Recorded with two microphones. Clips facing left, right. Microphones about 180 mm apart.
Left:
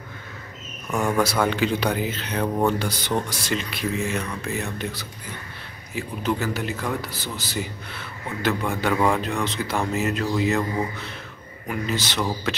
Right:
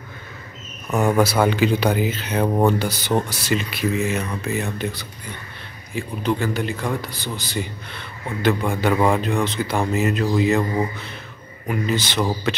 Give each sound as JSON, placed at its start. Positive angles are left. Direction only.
{"t": 0.9, "sound": "speech", "side_deg": -20}
{"t": 1.2, "sound": "a man's voice", "side_deg": -5}